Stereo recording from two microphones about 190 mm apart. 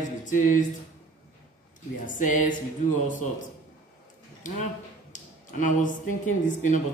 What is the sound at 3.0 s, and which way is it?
Speech, 40° left (ahead or behind).